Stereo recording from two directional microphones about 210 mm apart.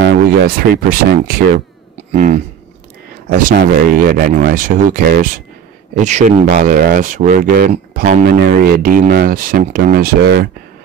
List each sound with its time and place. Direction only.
0.0 s speech: 50° right (ahead or behind)
2.1 s speech: 35° right (ahead or behind)
3.4 s speech: 45° right (ahead or behind)